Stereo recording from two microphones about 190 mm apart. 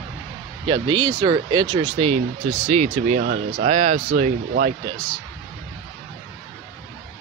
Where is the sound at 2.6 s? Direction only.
40° right (ahead or behind).